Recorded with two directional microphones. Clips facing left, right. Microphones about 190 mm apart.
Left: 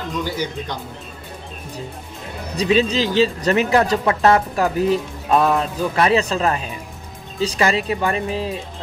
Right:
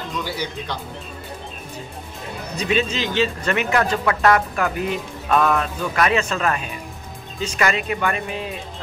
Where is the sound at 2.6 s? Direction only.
35° left (ahead or behind).